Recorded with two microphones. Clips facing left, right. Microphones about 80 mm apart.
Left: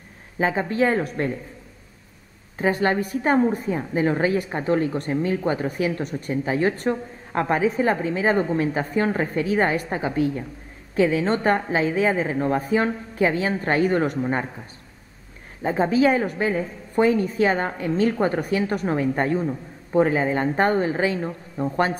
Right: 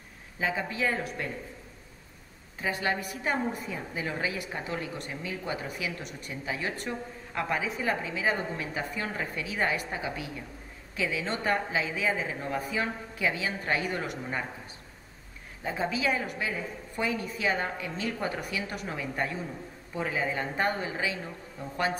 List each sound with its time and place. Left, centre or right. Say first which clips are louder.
0.4 s a woman's voice: left 9 dB; left
2.6 s a woman's voice: left 9 dB; left
15.6 s a woman's voice: left 11 dB; left